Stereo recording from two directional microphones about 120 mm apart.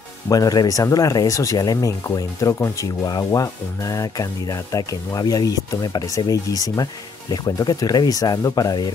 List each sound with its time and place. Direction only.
0.3 s speech: 30° left (ahead or behind)